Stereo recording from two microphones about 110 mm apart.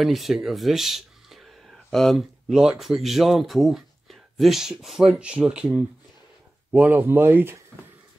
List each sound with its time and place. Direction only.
0.0 s speech: centre (ahead or behind); by 7.6 s 20° right (ahead or behind)